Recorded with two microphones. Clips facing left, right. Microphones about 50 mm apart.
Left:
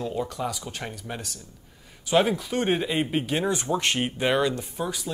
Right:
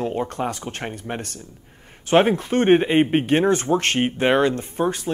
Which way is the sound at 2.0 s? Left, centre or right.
Right.